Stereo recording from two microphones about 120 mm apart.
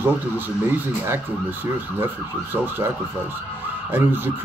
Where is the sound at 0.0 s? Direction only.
15° right (ahead or behind).